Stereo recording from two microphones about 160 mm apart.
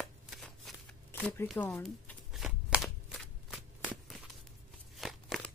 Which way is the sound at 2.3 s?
Centre (ahead or behind).